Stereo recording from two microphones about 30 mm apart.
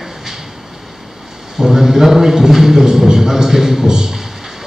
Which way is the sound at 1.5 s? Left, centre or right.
Centre.